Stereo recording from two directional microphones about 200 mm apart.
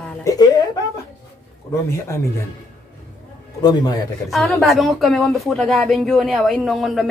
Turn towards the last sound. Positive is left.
turn(degrees=0)  # may be behind; listen again after turning